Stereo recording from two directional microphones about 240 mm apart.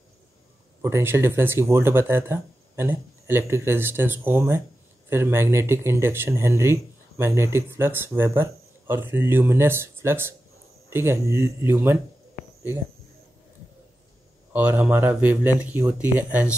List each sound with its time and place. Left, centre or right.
0.8 s speech: centre
14.5 s speech: centre